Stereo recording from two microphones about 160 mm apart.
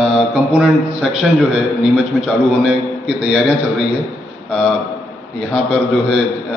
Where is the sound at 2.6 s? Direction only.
5° right (ahead or behind).